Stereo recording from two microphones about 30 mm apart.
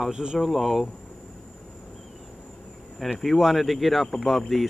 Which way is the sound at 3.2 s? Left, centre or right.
Centre.